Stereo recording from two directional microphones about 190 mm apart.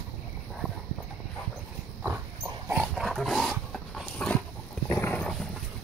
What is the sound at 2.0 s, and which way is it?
Dog, 10° right (ahead or behind).